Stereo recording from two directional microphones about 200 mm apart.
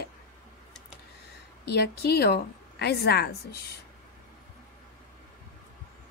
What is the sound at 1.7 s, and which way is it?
A woman's voice, 55° left (ahead or behind).